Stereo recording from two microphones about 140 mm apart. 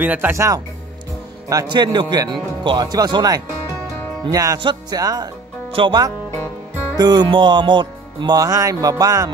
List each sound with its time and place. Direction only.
0.0 s a man's voice: 15° right (ahead or behind)